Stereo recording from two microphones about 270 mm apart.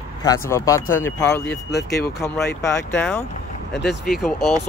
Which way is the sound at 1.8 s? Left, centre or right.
Left.